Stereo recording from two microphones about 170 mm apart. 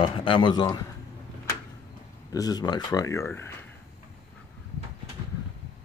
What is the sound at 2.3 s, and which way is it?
Speech, 20° left (ahead or behind).